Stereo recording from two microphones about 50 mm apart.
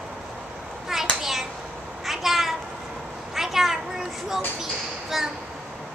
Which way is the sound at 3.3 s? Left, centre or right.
Centre.